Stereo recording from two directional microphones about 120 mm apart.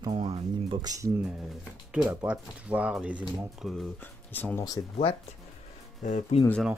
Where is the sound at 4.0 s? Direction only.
15° left (ahead or behind).